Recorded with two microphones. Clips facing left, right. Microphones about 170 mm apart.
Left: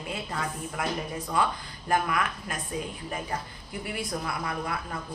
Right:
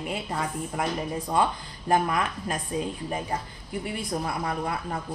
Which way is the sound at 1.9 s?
30° right (ahead or behind).